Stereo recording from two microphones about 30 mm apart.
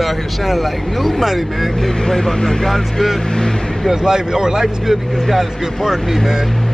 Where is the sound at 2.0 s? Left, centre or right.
Centre.